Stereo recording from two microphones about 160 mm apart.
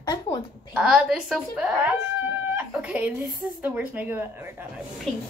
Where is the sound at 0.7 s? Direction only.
5° right (ahead or behind).